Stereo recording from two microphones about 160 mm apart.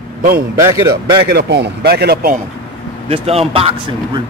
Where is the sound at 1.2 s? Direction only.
90° right; by 2.4 s 75° right (ahead or behind).